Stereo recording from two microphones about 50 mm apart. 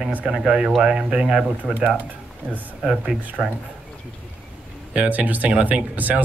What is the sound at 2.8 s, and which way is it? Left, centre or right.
Speech, centre.